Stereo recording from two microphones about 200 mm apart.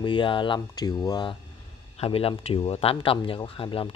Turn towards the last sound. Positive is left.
turn(degrees=25)  # may be behind; listen again after turning